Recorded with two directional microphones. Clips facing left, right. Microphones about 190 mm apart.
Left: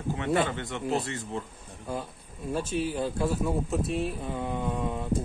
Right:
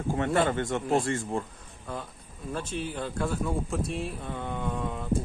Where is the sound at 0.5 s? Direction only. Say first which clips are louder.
Right 4 dB; 45° right (ahead or behind).